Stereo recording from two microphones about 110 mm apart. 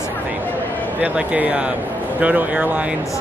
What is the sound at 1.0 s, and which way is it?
Speech, 15° right (ahead or behind).